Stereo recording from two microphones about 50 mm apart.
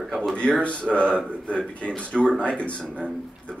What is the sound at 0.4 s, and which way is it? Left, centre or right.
A man's voice, left.